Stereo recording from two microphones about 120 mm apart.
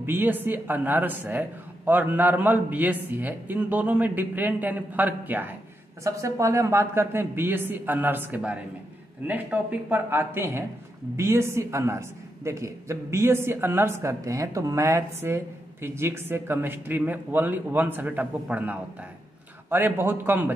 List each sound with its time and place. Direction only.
0.0 s a man's voice: 15° right (ahead or behind)